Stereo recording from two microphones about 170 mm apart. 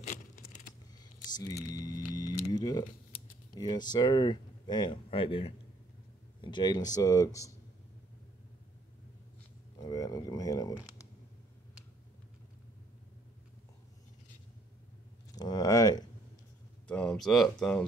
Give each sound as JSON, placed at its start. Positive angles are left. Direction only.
{"t": 0.0, "sound": "a sound", "side_deg": 45}
{"t": 1.3, "sound": "speech", "side_deg": 20}
{"t": 9.8, "sound": "speech", "side_deg": 20}
{"t": 15.3, "sound": "speech", "side_deg": 25}
{"t": 16.8, "sound": "speech", "side_deg": 5}